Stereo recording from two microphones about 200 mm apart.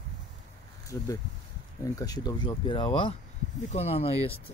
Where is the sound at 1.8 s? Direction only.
20° left (ahead or behind).